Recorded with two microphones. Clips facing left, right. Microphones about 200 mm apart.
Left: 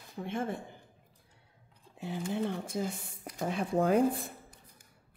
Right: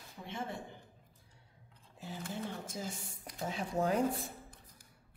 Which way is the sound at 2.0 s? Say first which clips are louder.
Left 8 dB; 60° left (ahead or behind).